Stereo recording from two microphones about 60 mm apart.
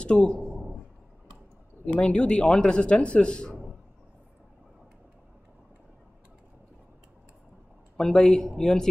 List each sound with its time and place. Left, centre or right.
0.0 s a man's voice: centre
2.0 s a man's voice: centre
8.0 s a man's voice: centre